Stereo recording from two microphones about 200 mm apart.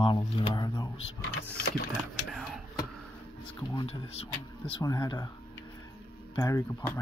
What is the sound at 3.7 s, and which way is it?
Speech, 25° left (ahead or behind).